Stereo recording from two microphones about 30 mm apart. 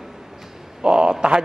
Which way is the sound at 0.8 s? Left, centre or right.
Right.